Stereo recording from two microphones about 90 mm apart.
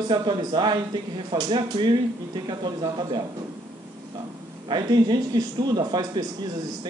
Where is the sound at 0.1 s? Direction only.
60° right (ahead or behind).